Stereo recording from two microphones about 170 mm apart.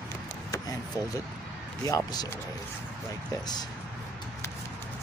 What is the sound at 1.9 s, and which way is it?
Speech, 20° left (ahead or behind).